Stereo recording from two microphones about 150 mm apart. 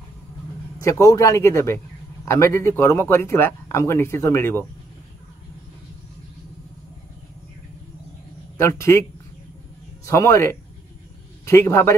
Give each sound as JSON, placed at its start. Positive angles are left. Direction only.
{"t": 0.7, "sound": "a man's voice", "side_deg": 20}
{"t": 8.5, "sound": "a man's voice", "side_deg": 20}
{"t": 10.0, "sound": "speech", "side_deg": 20}